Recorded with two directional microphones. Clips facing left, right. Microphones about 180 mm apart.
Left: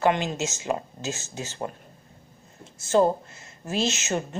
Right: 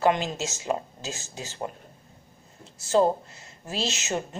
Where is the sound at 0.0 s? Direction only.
35° right (ahead or behind).